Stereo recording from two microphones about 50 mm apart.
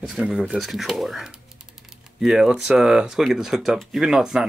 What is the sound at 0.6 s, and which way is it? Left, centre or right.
Speech, centre.